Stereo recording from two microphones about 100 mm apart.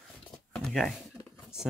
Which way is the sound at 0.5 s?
5° left (ahead or behind).